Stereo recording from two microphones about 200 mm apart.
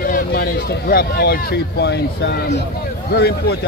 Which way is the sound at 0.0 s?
50° left (ahead or behind).